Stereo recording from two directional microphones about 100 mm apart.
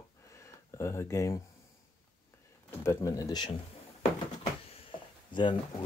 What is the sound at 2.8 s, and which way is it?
Speech, 30° left (ahead or behind).